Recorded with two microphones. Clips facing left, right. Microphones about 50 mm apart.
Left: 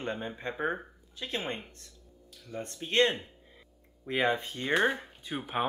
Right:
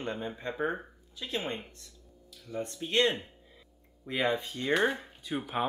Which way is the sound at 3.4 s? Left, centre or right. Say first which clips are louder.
Left 1 dB; left.